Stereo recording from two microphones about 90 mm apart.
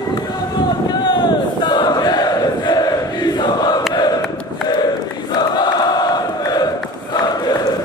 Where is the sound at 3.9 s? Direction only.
50° left (ahead or behind).